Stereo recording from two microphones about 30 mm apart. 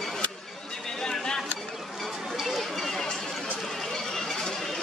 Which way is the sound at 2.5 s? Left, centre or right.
Centre.